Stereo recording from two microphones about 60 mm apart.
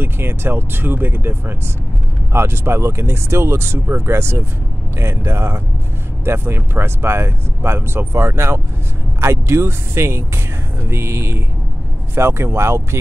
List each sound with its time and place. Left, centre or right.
0.0 s speech: right